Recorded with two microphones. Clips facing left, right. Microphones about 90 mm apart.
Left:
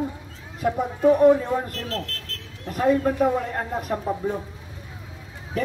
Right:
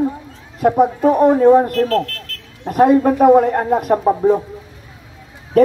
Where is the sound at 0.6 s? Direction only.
50° right (ahead or behind).